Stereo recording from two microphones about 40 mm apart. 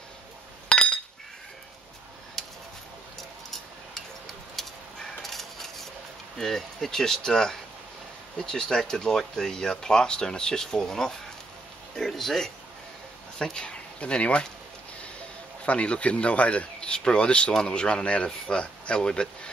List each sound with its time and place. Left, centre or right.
0.7 s chink: left
2.4 s a sound: centre
6.3 s speech: centre
13.4 s speech: centre
15.6 s speech: left